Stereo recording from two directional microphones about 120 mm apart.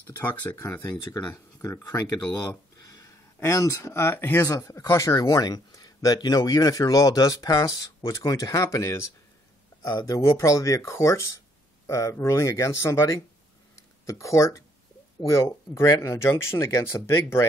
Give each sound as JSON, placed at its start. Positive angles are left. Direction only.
{"t": 0.0, "sound": "speech", "side_deg": 15}
{"t": 1.6, "sound": "speech", "side_deg": 25}